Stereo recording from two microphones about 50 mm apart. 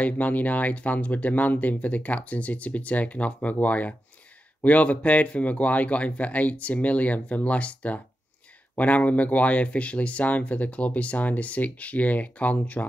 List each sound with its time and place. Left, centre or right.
0.0 s speech: left